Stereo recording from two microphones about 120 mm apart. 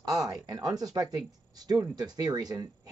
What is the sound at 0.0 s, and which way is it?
Speech, 30° right (ahead or behind).